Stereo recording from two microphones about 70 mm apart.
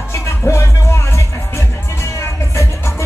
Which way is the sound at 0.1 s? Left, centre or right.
Left.